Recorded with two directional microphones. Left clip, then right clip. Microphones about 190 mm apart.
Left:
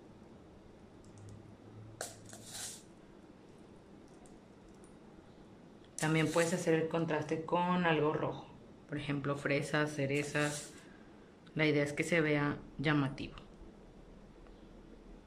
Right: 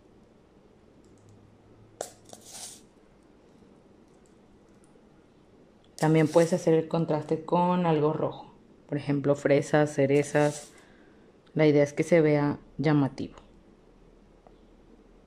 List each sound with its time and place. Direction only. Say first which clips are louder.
5.9 s speech: right 10 dB; 30° right (ahead or behind)
11.5 s speech: right 10 dB; 30° right (ahead or behind)